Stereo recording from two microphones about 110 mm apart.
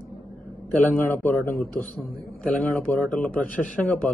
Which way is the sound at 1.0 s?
15° left (ahead or behind).